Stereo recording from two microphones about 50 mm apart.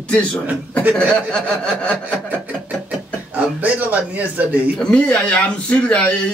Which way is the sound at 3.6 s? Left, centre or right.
Right.